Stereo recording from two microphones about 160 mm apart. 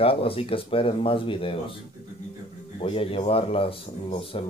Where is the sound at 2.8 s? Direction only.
35° left (ahead or behind).